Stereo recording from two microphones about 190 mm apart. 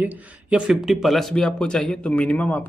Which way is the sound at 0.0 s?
5° right (ahead or behind).